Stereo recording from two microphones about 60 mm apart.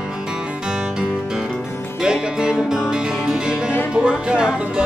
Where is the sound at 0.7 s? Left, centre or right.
Centre.